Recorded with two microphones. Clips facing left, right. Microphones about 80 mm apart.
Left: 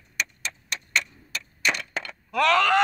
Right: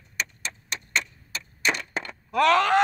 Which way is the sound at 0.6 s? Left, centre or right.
Right.